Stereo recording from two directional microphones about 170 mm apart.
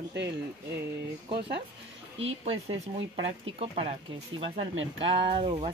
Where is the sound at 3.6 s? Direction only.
35° right (ahead or behind).